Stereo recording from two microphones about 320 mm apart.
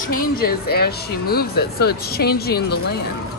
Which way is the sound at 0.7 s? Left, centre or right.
Left.